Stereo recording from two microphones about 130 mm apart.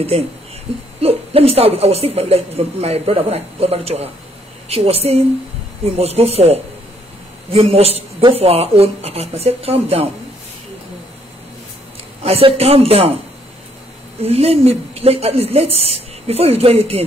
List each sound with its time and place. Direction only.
1.0 s a woman's voice: 50° right (ahead or behind)
12.2 s a woman's voice: 50° right (ahead or behind)
14.2 s a woman's voice: 50° right (ahead or behind)